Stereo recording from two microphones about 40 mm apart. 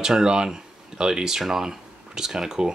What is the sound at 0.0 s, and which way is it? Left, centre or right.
Speech, centre.